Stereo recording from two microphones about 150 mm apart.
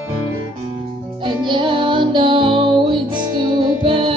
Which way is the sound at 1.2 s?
35° right (ahead or behind).